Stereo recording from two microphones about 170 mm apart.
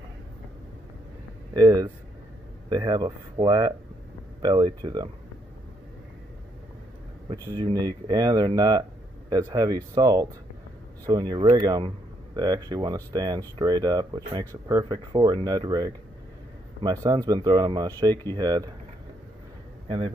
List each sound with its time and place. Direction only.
1.5 s speech: 25° right (ahead or behind)
7.5 s speech: 25° right (ahead or behind)